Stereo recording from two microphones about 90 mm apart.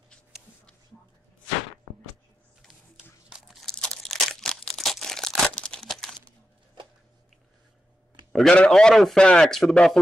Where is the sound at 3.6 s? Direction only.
10° left (ahead or behind).